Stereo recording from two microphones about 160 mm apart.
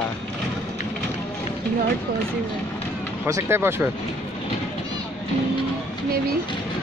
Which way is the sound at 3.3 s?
20° right (ahead or behind).